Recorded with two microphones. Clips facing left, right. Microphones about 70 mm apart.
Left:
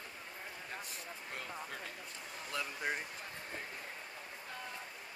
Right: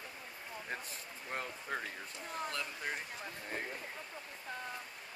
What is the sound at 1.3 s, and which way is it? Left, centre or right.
Speech, right.